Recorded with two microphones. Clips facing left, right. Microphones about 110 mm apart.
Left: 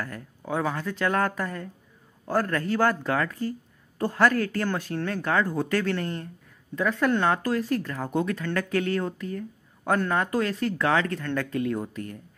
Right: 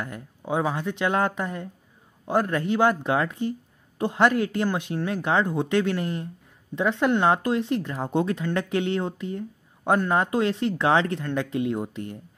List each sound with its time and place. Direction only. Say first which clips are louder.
0.5 s speech: right 2 dB; 20° right (ahead or behind)